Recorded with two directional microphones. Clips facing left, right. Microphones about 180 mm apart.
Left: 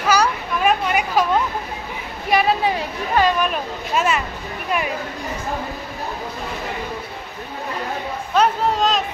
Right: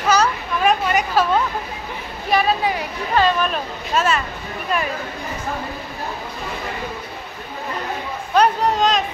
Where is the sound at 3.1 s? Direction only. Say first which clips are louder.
Even; 10° left (ahead or behind).